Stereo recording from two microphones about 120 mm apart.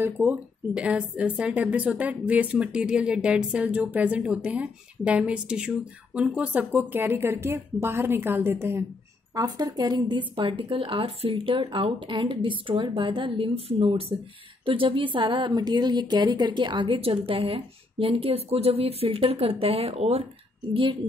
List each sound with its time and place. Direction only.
0.0 s a woman's voice: 15° right (ahead or behind)
9.3 s a woman's voice: 30° right (ahead or behind); by 20.2 s 55° right (ahead or behind)